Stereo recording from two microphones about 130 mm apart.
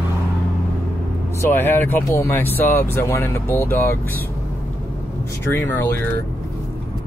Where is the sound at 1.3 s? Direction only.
20° left (ahead or behind).